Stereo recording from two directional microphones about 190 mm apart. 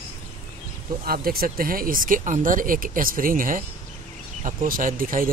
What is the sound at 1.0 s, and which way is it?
Speech, 50° right (ahead or behind).